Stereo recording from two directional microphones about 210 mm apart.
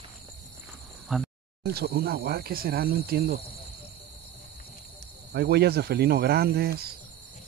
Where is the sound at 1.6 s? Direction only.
50° right (ahead or behind).